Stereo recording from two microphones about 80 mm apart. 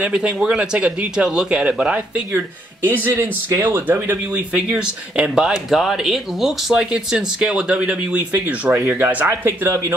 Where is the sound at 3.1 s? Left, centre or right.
Right.